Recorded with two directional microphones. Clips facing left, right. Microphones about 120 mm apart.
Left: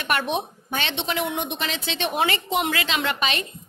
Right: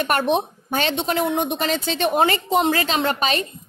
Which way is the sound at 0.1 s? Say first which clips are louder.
Right 1 dB; 40° right (ahead or behind).